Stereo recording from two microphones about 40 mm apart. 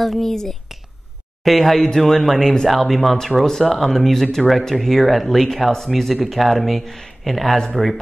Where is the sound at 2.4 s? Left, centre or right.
Centre.